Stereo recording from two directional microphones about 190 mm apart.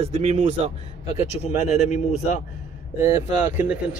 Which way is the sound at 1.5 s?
40° left (ahead or behind).